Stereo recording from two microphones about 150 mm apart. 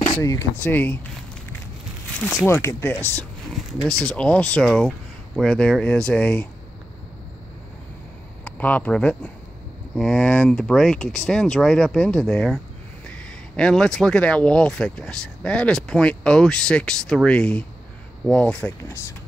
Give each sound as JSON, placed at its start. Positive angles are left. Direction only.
{"t": 0.2, "sound": "speech", "side_deg": 20}
{"t": 2.1, "sound": "speech", "side_deg": 10}
{"t": 3.6, "sound": "a sound", "side_deg": 0}
{"t": 4.0, "sound": "speech", "side_deg": 5}
{"t": 8.5, "sound": "speech", "side_deg": 10}